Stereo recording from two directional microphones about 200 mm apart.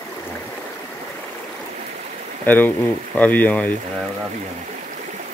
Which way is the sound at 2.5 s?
10° left (ahead or behind).